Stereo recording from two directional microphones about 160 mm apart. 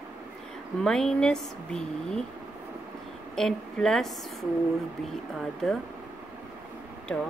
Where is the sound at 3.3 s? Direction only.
5° left (ahead or behind).